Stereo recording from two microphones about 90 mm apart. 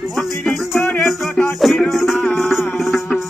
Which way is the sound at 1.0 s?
5° left (ahead or behind).